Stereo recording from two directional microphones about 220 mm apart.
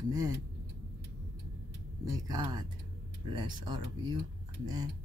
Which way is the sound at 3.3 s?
20° right (ahead or behind).